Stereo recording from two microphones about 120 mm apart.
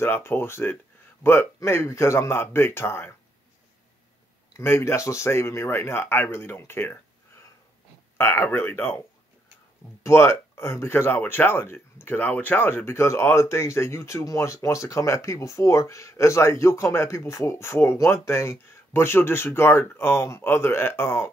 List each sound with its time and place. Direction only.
0.0 s speech: 20° left (ahead or behind)
4.6 s speech: 20° left (ahead or behind)
8.2 s speech: 20° left (ahead or behind)
10.0 s speech: 20° left (ahead or behind)